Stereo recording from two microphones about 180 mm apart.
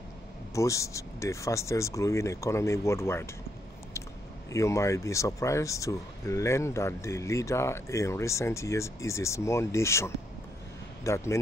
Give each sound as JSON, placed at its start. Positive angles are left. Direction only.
{"t": 0.6, "sound": "speech", "side_deg": 15}
{"t": 4.5, "sound": "speech", "side_deg": 15}